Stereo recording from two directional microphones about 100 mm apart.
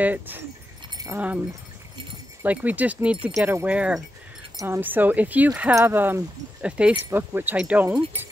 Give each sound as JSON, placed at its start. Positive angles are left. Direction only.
{"t": 0.0, "sound": "speech", "side_deg": -15}
{"t": 0.8, "sound": "keys jangling", "side_deg": -40}
{"t": 1.1, "sound": "speech", "side_deg": -15}
{"t": 2.4, "sound": "speech", "side_deg": -15}